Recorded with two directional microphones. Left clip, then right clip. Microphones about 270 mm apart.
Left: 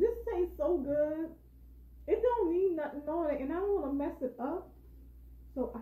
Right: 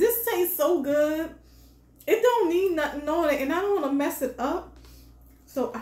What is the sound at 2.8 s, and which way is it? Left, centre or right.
A woman's voice, centre.